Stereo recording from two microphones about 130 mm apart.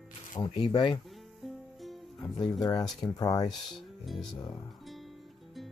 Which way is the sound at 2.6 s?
30° left (ahead or behind).